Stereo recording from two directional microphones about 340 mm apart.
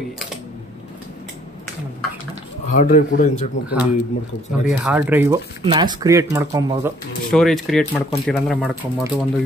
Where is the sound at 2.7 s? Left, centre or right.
Left.